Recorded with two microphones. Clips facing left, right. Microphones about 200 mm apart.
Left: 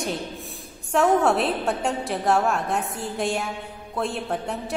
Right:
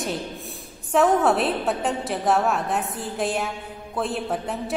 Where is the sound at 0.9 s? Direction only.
Centre (ahead or behind).